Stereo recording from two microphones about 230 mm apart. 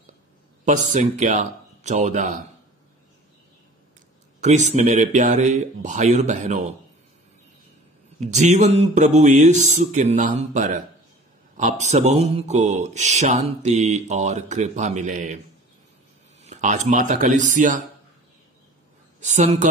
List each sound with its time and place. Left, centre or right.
0.7 s speech: right
4.4 s speech: right
8.2 s speech: right
16.4 s speech: right
19.1 s a woman's voice: right